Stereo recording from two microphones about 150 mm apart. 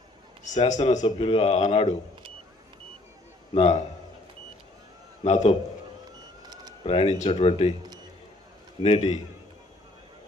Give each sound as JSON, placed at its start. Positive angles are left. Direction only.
{"t": 0.7, "sound": "a man's voice", "side_deg": 50}
{"t": 1.0, "sound": "speech", "side_deg": 35}
{"t": 3.5, "sound": "a man's voice", "side_deg": 40}
{"t": 5.2, "sound": "a man's voice", "side_deg": 50}
{"t": 6.8, "sound": "speech", "side_deg": 40}
{"t": 8.8, "sound": "a man's voice", "side_deg": 45}